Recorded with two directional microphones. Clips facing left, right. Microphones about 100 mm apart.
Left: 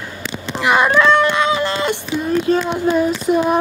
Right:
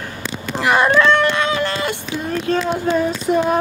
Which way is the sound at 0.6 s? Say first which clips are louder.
Left 1 dB; 10° left (ahead or behind).